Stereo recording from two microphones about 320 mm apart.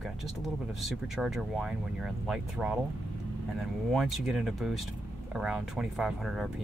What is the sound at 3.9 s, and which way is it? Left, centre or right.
Speech, centre.